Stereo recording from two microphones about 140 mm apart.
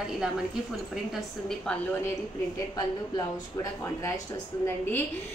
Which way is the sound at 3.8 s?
20° left (ahead or behind).